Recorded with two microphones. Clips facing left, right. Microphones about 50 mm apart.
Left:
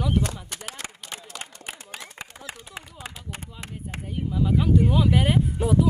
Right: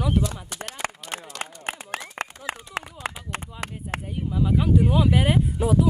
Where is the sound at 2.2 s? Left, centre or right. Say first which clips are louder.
Right 7 dB; right.